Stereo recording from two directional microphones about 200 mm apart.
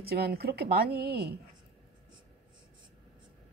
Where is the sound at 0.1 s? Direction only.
50° right (ahead or behind).